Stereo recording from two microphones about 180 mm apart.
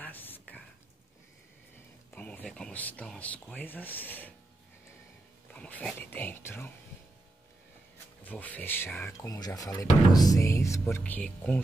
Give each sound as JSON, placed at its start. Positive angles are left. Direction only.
{"t": 0.0, "sound": "a sound", "side_deg": 10}
{"t": 2.1, "sound": "speech", "side_deg": 10}
{"t": 5.5, "sound": "speech", "side_deg": 5}
{"t": 8.2, "sound": "speech", "side_deg": 10}